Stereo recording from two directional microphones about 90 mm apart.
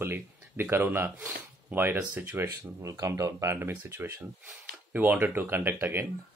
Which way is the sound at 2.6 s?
40° right (ahead or behind).